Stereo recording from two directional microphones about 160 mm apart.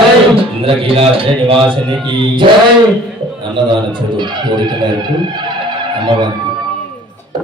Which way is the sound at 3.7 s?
30° right (ahead or behind).